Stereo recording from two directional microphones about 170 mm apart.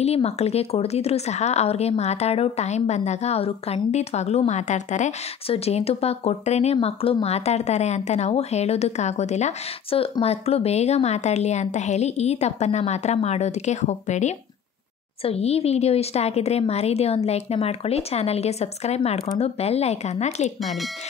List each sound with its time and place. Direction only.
0.0 s speech: 40° left (ahead or behind)